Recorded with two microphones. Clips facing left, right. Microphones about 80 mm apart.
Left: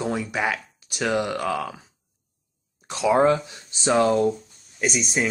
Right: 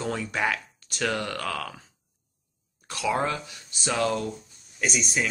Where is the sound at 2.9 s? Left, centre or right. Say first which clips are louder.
Left 8 dB; left.